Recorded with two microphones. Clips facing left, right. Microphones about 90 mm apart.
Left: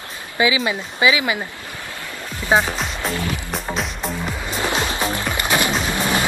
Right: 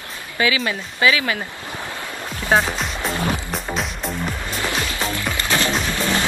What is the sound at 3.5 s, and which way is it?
Music, centre (ahead or behind).